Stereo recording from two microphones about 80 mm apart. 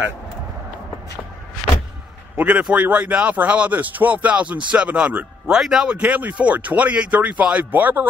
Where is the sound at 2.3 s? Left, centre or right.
Centre.